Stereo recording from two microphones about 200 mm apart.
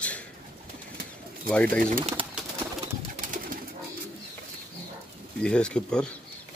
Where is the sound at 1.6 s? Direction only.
45° right (ahead or behind).